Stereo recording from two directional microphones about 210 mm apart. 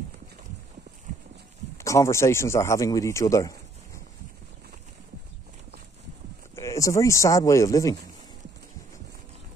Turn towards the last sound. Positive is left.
turn(degrees=15)  # may be behind; listen again after turning